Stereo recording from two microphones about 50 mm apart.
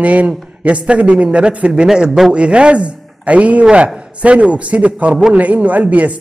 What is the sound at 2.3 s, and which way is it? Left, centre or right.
A man's voice, right.